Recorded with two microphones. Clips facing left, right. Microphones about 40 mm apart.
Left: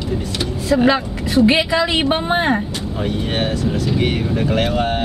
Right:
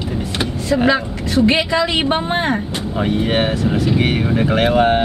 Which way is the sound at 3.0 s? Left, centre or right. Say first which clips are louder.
Right 4 dB; centre.